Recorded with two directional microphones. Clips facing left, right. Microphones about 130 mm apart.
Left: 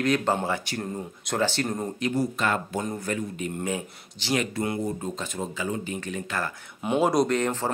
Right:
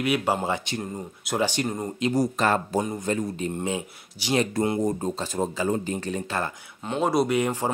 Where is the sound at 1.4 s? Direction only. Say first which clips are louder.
Even; 15° right (ahead or behind).